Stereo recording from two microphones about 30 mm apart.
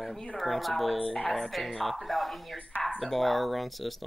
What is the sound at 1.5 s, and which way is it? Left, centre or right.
Speech, centre.